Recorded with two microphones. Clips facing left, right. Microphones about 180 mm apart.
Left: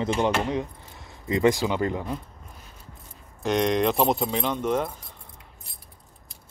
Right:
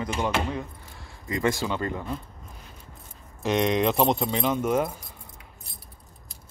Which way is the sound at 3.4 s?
Centre (ahead or behind).